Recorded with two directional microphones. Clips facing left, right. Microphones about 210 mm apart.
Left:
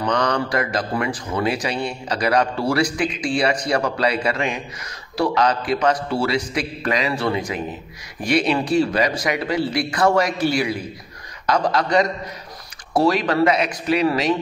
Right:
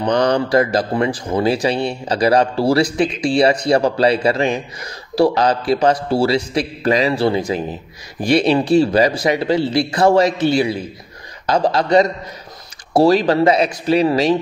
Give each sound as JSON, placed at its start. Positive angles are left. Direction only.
{"t": 0.0, "sound": "a man's voice", "side_deg": -30}